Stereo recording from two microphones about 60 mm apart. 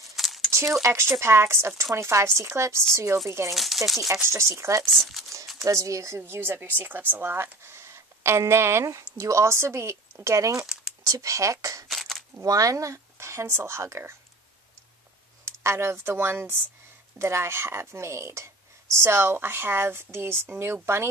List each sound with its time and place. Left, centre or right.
0.1 s a sound: centre
0.8 s speech: right
3.5 s speech: centre
4.3 s speech: right
4.8 s speech: centre
5.6 s a woman's voice: right
8.8 s speech: right
11.9 s a sound: centre
12.4 s speech: right
15.4 s speech: right